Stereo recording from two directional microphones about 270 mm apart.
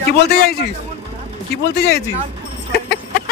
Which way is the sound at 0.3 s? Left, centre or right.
Left.